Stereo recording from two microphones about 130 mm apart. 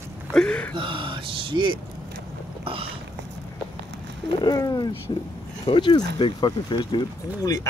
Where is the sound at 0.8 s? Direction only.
40° right (ahead or behind).